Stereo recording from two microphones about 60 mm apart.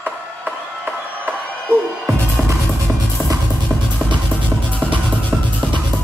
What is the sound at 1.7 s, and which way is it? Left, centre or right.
Music, right.